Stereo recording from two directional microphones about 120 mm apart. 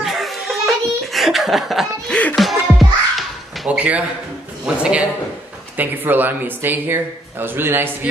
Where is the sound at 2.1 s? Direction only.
10° left (ahead or behind).